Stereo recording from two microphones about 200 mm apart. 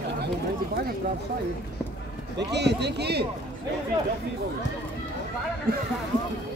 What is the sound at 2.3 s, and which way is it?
Speech, 55° right (ahead or behind).